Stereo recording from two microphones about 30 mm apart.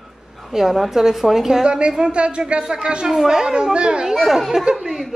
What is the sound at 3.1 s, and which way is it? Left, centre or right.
Speech, centre.